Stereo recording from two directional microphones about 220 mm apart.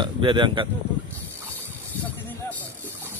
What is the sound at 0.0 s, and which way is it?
Speech, 20° right (ahead or behind).